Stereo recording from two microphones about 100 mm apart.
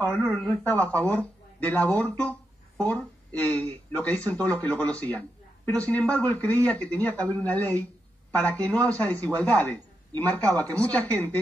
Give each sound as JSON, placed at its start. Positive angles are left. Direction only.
{"t": 0.3, "sound": "a man's voice", "side_deg": 15}